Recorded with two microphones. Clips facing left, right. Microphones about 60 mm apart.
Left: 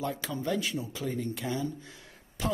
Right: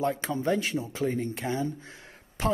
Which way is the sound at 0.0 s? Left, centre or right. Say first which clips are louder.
Right 5 dB; right.